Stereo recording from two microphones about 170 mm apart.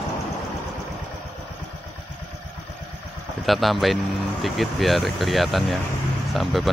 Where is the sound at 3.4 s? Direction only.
Centre (ahead or behind).